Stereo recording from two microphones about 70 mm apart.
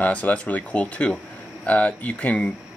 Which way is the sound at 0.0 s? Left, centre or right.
Centre.